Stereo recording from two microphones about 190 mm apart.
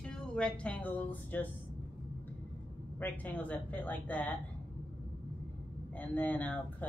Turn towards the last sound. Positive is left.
turn(degrees=10)  # may be behind; listen again after turning